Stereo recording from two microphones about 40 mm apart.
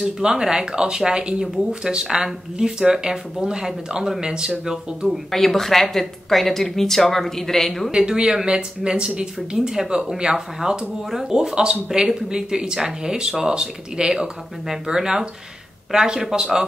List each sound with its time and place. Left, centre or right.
0.0 s speech: centre
5.3 s speech: centre
7.9 s speech: right